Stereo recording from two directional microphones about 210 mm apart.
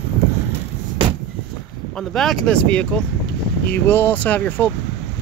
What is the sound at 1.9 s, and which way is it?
Speech, centre (ahead or behind).